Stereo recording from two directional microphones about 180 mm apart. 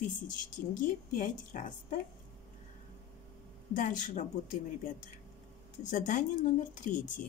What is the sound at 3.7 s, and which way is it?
Speech, 45° left (ahead or behind).